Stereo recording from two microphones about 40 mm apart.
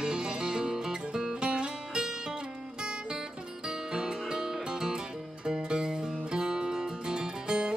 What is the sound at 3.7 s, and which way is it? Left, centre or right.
Music, centre.